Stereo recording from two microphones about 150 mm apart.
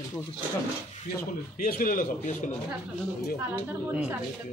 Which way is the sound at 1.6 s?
70° left (ahead or behind).